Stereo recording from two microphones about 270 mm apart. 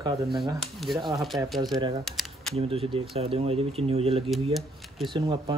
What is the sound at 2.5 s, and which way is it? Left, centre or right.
Speech, right.